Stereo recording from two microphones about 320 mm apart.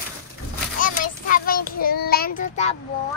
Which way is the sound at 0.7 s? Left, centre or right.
Left.